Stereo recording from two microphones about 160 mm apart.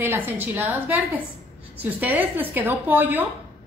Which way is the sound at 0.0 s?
10° right (ahead or behind).